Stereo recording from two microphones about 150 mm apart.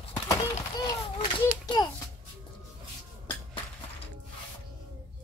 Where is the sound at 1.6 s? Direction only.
30° left (ahead or behind).